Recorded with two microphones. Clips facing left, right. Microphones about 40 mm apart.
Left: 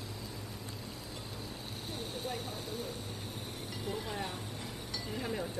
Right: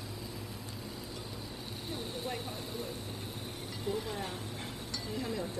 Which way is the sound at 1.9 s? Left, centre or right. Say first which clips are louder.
Right 1 dB; centre.